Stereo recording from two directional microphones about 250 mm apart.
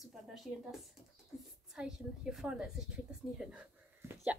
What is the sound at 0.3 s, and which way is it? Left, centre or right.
Speech, centre.